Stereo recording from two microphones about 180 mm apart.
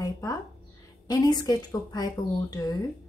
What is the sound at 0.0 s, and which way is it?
A woman's voice, 20° left (ahead or behind).